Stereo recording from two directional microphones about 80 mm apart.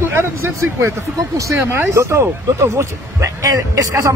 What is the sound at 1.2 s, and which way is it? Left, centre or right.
Speech, right.